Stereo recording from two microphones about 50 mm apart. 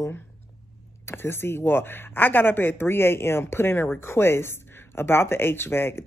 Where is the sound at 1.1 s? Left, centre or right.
Left.